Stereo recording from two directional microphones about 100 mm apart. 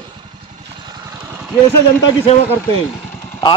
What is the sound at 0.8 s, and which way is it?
Vehicle, 35° right (ahead or behind).